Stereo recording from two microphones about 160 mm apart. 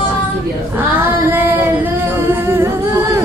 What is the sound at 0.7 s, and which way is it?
Singing, 15° right (ahead or behind).